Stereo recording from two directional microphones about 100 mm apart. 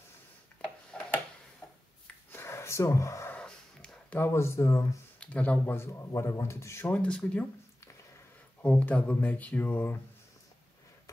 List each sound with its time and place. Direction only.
0.9 s tick-tock: 10° left (ahead or behind)
1.6 s finger snapping: 15° left (ahead or behind)
2.3 s a sound: 25° left (ahead or behind)
3.3 s dog: 10° left (ahead or behind)
4.2 s a man's voice: 25° left (ahead or behind)
5.2 s speech: 15° left (ahead or behind)
5.8 s a man's voice: 25° left (ahead or behind)
6.9 s speech: 10° left (ahead or behind)
8.6 s speech: 15° left (ahead or behind)